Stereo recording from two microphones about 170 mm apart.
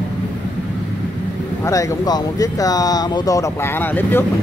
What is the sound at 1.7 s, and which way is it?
Speech, 20° left (ahead or behind).